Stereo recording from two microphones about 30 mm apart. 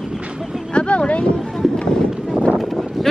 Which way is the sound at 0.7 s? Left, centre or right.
Left.